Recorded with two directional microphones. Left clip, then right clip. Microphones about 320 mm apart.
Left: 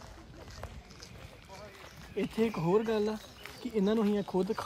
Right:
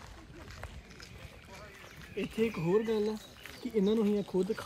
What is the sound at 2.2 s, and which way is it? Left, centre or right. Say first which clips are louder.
Speech: left 1 dB; left.